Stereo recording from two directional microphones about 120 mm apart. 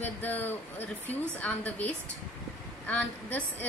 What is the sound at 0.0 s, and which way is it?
A woman's voice, 15° left (ahead or behind).